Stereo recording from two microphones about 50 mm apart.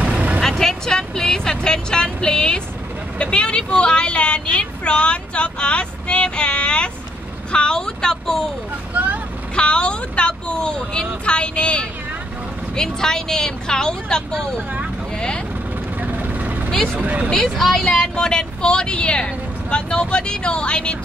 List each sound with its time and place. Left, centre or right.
0.4 s a woman's voice: centre
8.9 s vehicle: right
9.6 s a woman's voice: centre
16.0 s vehicle: right
17.0 s speech: right
17.3 s speech: centre
17.9 s a woman's voice: centre